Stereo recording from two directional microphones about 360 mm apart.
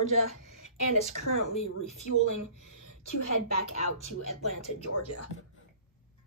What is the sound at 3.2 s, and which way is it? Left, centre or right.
A woman's voice, left.